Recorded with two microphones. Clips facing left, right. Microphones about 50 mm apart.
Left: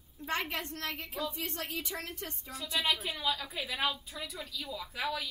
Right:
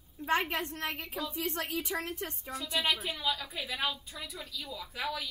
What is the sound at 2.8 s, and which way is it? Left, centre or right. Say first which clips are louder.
A woman's voice: even; centre.